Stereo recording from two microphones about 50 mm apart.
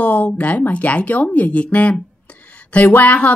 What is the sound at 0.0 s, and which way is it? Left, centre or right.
A woman's voice, left.